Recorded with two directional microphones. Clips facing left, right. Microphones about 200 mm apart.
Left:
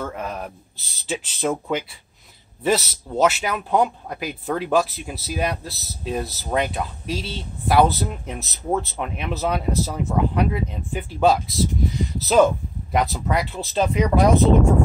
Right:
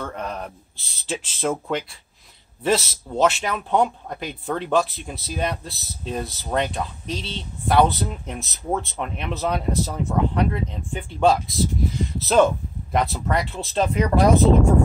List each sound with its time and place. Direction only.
0.0 s speech: 5° left (ahead or behind)